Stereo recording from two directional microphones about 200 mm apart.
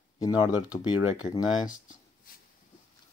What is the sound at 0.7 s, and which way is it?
Speech, 20° left (ahead or behind).